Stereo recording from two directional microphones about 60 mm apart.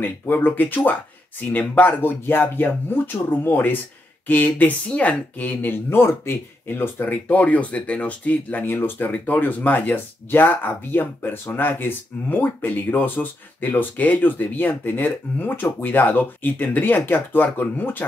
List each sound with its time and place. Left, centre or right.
0.0 s speech: left